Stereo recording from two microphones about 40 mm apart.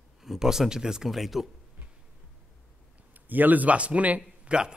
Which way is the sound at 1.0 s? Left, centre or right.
Centre.